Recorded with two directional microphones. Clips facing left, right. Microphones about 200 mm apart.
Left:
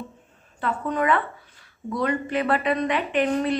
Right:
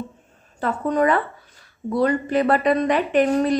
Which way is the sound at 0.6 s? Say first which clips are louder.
Right 5 dB; 40° right (ahead or behind).